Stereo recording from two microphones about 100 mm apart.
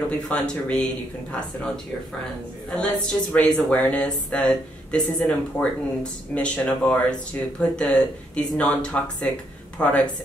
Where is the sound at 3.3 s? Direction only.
10° left (ahead or behind).